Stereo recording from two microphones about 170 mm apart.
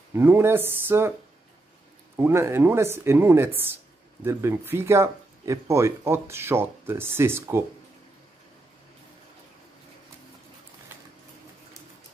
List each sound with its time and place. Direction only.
0.1 s speech: 15° right (ahead or behind)
2.1 s speech: 15° right (ahead or behind)